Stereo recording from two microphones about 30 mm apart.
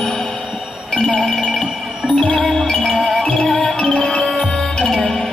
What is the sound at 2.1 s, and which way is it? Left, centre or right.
Music, centre.